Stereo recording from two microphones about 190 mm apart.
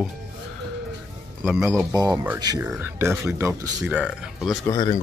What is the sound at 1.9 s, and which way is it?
Speech, 20° right (ahead or behind).